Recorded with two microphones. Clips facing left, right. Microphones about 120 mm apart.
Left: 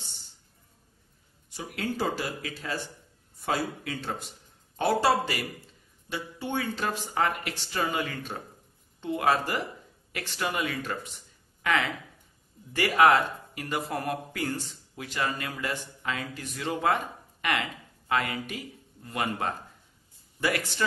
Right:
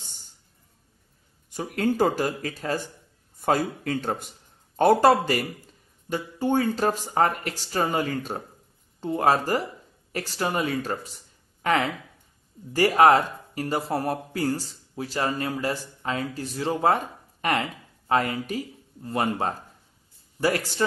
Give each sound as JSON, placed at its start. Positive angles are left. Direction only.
{"t": 1.5, "sound": "speech", "side_deg": -45}